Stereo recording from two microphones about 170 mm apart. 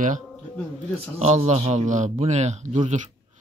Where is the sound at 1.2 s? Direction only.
40° right (ahead or behind).